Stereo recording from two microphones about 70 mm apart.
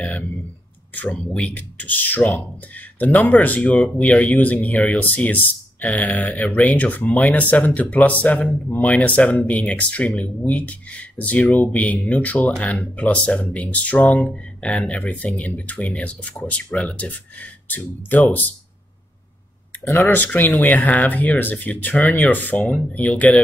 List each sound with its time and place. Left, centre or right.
1.5 s speech: left
20.0 s speech: left